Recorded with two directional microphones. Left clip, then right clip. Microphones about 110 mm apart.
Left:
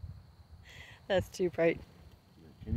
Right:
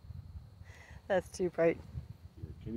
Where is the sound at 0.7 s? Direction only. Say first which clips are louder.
Left 1 dB; 30° left (ahead or behind).